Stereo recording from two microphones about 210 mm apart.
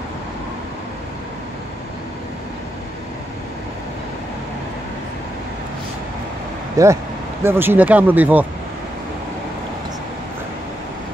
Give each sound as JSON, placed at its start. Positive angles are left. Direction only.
{"t": 6.8, "sound": "speech", "side_deg": -15}